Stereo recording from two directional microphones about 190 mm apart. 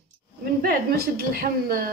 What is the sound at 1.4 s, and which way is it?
Speech, 50° right (ahead or behind).